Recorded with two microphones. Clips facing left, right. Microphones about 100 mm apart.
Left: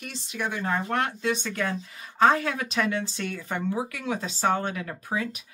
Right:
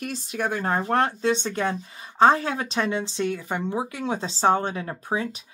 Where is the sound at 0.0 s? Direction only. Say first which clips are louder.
Right 4 dB; 45° right (ahead or behind).